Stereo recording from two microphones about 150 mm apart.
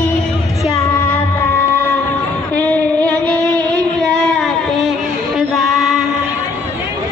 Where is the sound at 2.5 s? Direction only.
10° left (ahead or behind).